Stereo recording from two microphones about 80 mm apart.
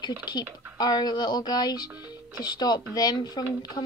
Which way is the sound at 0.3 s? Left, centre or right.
Left.